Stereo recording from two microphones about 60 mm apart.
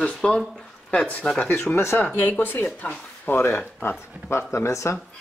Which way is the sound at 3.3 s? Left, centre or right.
Left.